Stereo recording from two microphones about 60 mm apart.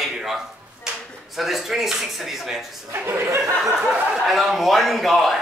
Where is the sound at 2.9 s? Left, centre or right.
Right.